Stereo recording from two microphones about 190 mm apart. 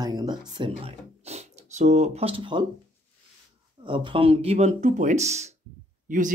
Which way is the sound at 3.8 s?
25° right (ahead or behind).